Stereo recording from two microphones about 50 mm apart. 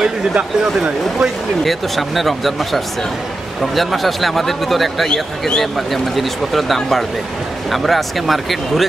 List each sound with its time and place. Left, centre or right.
0.0 s speech: centre
1.6 s a man's voice: centre